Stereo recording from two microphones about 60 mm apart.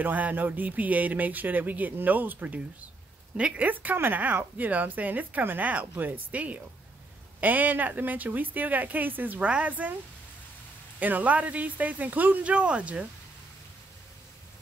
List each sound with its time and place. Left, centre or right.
0.0 s a woman's voice: right
11.0 s a woman's voice: right